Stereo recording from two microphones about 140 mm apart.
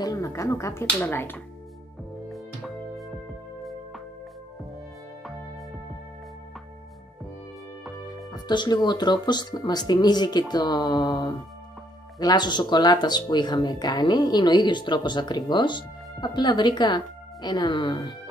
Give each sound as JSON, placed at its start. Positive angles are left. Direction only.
{"t": 0.0, "sound": "speech", "side_deg": 25}
{"t": 2.2, "sound": "music", "side_deg": 0}
{"t": 8.3, "sound": "speech", "side_deg": 30}